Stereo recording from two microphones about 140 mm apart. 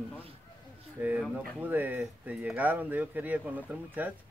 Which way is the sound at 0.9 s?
10° right (ahead or behind).